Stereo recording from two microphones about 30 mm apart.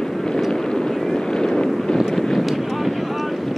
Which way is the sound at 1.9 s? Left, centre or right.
Left.